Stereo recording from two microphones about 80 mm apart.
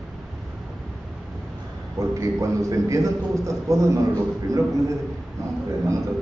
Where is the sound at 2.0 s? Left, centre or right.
Right.